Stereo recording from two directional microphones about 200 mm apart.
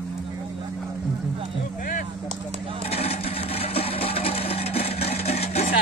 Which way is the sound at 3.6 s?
30° left (ahead or behind).